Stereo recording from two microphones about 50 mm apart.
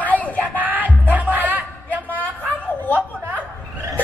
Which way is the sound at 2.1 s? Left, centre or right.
Left.